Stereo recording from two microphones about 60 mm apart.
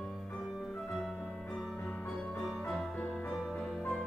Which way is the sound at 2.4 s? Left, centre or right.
Centre.